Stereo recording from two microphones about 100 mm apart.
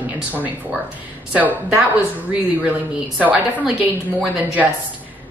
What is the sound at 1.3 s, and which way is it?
A woman's voice, 15° right (ahead or behind).